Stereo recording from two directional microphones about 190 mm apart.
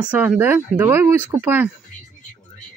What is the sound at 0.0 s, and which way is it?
Speech, 5° right (ahead or behind).